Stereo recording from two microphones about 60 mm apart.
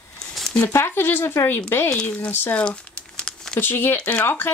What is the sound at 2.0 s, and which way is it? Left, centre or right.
Speech, left.